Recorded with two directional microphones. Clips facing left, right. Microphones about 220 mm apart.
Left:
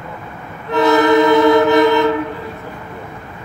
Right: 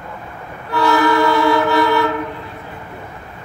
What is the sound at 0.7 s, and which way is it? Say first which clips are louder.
Vehicle: left 4 dB; 20° left (ahead or behind).